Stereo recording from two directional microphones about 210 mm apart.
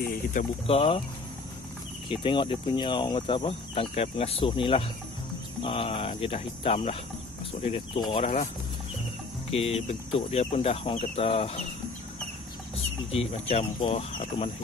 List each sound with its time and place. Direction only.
0.0 s speech: 40° left (ahead or behind)
0.7 s speech: 25° left (ahead or behind)
2.0 s speech: 25° left (ahead or behind)
9.5 s speech: 30° left (ahead or behind)
12.7 s speech: 30° left (ahead or behind)